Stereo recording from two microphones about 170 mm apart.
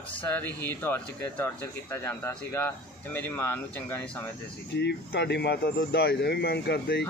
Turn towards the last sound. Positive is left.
turn(degrees=70)  # may be behind; listen again after turning